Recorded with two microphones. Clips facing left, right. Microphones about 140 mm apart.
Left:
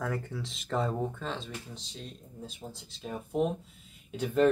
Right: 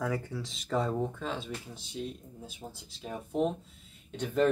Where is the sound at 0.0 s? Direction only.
Centre (ahead or behind).